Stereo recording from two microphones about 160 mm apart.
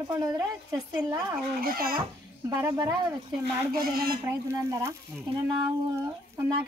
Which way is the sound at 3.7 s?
65° right (ahead or behind).